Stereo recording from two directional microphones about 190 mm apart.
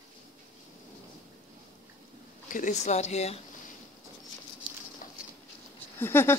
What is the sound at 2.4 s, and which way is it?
Speech, 45° left (ahead or behind).